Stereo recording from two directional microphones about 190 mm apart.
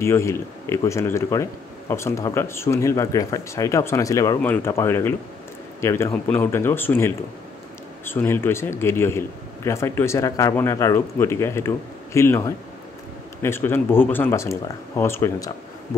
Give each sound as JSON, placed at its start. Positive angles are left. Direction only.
{"t": 0.0, "sound": "speech", "side_deg": 15}